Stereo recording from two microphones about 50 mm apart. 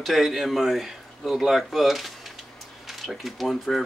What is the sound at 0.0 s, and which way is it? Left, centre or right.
Speech, centre.